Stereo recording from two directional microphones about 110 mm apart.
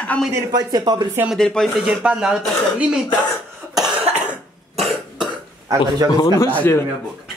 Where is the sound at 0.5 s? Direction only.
35° right (ahead or behind).